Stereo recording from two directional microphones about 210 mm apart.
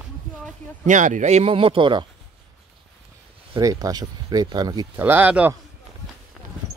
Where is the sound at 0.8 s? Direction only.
35° right (ahead or behind).